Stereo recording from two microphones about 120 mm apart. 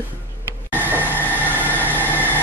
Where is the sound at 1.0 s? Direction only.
15° left (ahead or behind).